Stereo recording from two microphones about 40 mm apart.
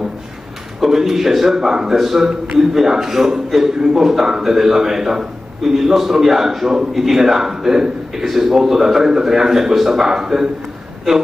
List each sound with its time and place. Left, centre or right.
0.7 s a man's voice: centre